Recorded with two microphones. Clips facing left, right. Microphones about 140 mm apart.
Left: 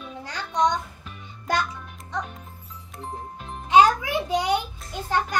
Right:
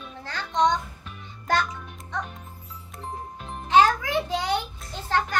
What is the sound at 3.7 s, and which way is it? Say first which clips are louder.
A child's voice: left 2 dB; 15° left (ahead or behind).